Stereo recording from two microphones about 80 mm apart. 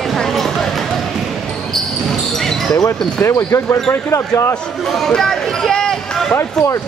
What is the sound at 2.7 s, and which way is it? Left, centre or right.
Speech, left.